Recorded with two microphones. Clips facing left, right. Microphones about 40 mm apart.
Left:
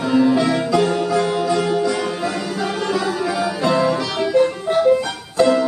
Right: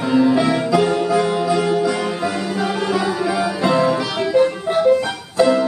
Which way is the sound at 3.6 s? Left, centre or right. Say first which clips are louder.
Right 1 dB; centre.